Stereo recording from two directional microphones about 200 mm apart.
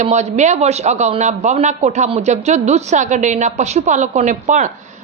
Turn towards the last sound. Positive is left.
turn(degrees=-40)  # may be behind; listen again after turning